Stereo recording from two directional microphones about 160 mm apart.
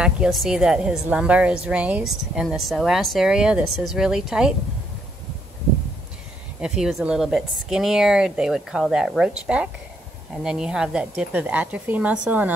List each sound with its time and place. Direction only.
0.0 s speech: centre (ahead or behind)
6.6 s speech: 5° right (ahead or behind)